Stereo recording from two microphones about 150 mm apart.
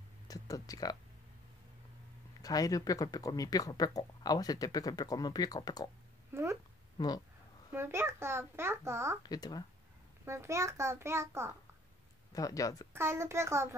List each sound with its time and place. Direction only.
0.3 s speech: 25° left (ahead or behind)
2.4 s speech: 25° left (ahead or behind)
6.3 s a child's voice: 20° right (ahead or behind)
7.0 s speech: 25° left (ahead or behind)
7.7 s a child's voice: 15° right (ahead or behind)
9.2 s speech: 25° left (ahead or behind)
10.2 s a child's voice: 20° right (ahead or behind)
12.3 s speech: 25° left (ahead or behind)
12.9 s a child's voice: 15° right (ahead or behind)